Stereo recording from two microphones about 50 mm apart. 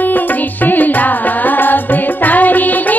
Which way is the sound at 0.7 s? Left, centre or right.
Left.